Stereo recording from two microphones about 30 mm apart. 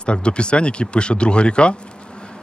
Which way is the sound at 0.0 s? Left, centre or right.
Left.